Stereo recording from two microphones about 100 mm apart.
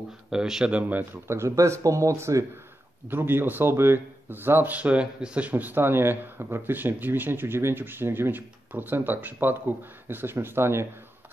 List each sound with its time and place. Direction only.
0.3 s speech: 5° right (ahead or behind); by 10.9 s 25° right (ahead or behind)